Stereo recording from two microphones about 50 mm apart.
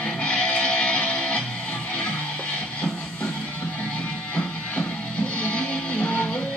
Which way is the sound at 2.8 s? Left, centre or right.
Centre.